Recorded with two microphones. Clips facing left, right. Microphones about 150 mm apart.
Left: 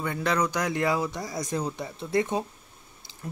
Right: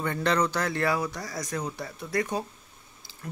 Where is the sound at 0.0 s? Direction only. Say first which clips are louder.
Right 1 dB; 10° left (ahead or behind).